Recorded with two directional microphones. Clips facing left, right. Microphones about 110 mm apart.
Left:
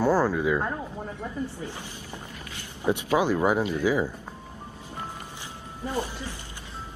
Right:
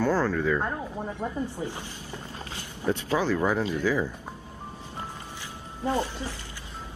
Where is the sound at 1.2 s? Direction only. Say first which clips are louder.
Right 2 dB; 20° right (ahead or behind).